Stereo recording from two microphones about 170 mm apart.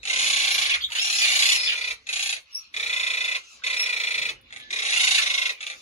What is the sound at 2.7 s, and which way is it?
Alarm clock, 40° left (ahead or behind).